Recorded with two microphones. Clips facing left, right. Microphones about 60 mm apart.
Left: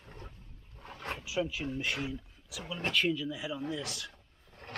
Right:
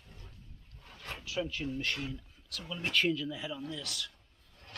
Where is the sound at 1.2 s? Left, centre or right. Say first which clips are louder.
Left 1 dB; centre.